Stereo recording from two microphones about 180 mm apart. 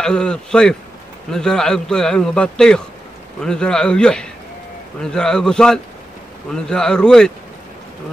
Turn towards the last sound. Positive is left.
turn(degrees=5)  # may be behind; listen again after turning